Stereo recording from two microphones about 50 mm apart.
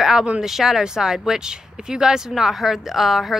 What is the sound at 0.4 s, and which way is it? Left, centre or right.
Speech, centre.